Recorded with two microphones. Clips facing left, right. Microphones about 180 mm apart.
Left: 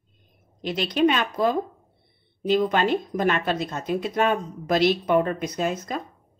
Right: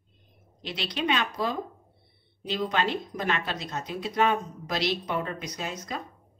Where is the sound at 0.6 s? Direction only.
50° left (ahead or behind).